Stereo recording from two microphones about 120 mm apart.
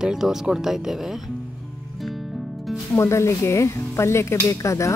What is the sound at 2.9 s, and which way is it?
Speech, 20° left (ahead or behind).